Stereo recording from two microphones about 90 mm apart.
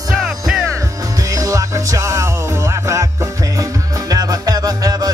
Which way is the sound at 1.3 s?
40° right (ahead or behind).